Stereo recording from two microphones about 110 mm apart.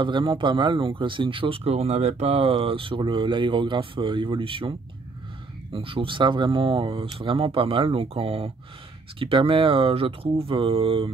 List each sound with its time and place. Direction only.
0.0 s speech: 45° right (ahead or behind)